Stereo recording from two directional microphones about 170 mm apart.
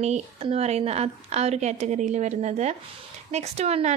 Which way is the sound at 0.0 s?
40° right (ahead or behind).